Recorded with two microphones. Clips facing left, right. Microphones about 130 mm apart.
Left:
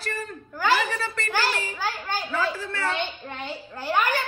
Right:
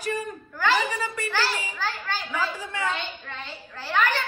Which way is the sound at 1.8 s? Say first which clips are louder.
Left 1 dB; 10° left (ahead or behind).